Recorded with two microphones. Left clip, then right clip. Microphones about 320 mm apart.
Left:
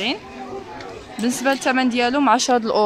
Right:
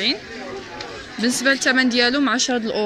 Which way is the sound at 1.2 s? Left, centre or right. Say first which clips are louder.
Right 1 dB; centre.